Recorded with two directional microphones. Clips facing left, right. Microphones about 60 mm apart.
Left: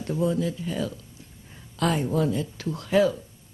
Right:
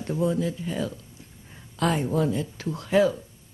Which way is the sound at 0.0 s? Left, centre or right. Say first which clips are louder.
Even; right.